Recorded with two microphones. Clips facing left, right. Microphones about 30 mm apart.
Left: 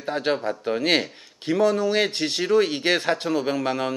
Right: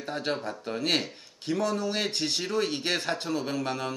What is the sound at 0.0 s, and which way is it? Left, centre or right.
A man's voice, left.